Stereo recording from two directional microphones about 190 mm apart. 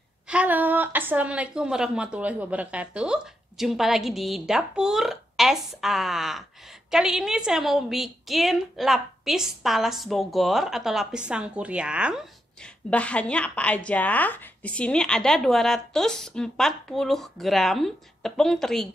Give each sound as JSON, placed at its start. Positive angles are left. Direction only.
{"t": 0.3, "sound": "a woman's voice", "side_deg": -10}
{"t": 12.9, "sound": "a woman's voice", "side_deg": 5}